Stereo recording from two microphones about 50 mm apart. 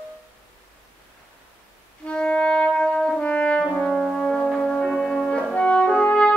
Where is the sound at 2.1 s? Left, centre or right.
Left.